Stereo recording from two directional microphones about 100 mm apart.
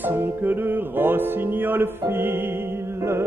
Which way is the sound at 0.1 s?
20° right (ahead or behind).